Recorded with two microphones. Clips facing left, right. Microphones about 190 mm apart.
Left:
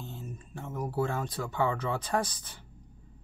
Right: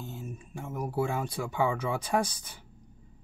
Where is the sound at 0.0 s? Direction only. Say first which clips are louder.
Right 2 dB; 10° right (ahead or behind).